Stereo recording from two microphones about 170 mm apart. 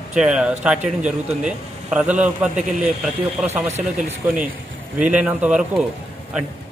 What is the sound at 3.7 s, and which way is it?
Speech, 40° right (ahead or behind).